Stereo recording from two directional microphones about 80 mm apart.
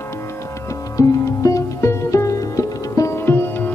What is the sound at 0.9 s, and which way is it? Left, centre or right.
Music, left.